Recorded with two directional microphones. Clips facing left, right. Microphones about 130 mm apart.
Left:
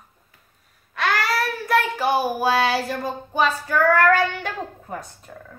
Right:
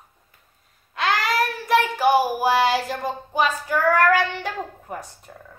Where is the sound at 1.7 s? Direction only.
15° right (ahead or behind).